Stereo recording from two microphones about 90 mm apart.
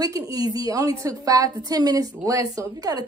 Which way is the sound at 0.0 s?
45° right (ahead or behind).